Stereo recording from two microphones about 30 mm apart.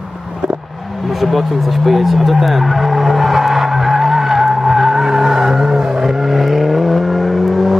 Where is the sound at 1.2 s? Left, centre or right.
Centre.